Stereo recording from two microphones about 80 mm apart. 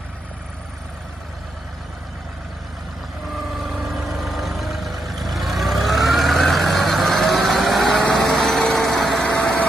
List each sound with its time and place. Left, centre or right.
3.6 s vehicle: centre
9.4 s vehicle: centre